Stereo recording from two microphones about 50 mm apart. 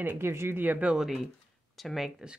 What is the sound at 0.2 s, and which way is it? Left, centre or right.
Speech, right.